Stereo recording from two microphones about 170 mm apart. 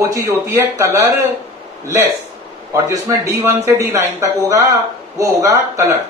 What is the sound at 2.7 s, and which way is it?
A man's voice, 20° right (ahead or behind).